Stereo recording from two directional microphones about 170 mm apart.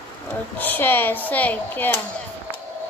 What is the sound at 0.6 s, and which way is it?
Speech, 10° left (ahead or behind).